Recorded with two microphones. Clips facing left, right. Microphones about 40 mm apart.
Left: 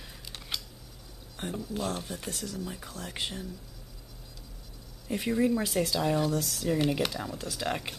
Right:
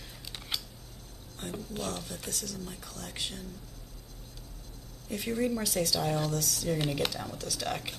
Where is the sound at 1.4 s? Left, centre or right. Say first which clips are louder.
Left 3 dB; left.